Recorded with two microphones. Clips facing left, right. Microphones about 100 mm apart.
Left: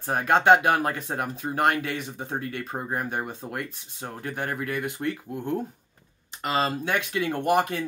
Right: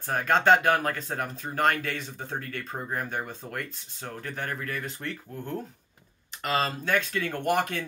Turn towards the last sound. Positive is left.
turn(degrees=10)  # may be behind; listen again after turning